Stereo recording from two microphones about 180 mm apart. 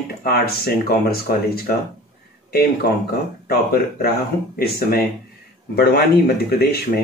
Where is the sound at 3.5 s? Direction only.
60° left (ahead or behind).